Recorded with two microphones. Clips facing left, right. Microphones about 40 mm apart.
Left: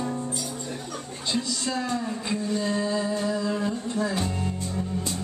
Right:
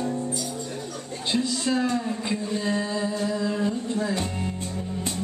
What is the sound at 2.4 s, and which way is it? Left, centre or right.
Music, centre.